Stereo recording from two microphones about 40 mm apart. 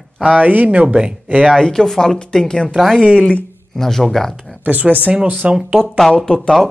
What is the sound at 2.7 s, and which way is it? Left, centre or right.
Speech, centre.